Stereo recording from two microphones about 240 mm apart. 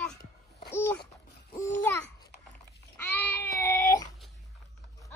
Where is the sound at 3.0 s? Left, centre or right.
Centre.